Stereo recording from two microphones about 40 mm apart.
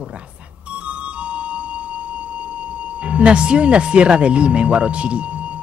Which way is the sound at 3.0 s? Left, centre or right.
Right.